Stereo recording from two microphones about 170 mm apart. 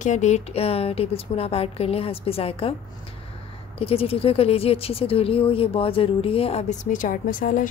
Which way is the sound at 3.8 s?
35° left (ahead or behind).